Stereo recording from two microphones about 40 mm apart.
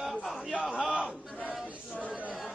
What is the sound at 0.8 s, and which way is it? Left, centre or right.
Battle cry, right.